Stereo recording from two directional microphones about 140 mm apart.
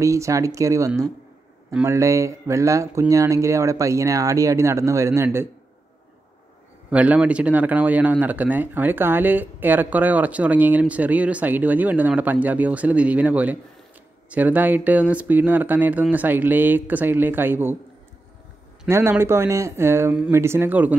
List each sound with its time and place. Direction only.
0.0 s speech: 20° right (ahead or behind)
6.9 s speech: 10° right (ahead or behind)
18.9 s speech: 15° right (ahead or behind)